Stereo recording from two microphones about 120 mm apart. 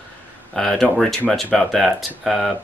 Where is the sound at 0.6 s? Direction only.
5° left (ahead or behind).